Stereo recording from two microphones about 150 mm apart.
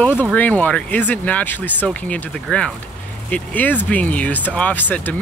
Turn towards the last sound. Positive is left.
turn(degrees=10)  # may be behind; listen again after turning